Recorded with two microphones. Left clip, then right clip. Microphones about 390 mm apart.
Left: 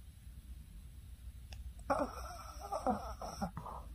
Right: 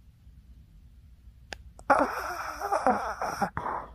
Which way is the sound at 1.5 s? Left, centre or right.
Right.